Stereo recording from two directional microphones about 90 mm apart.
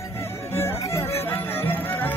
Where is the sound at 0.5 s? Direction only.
30° left (ahead or behind).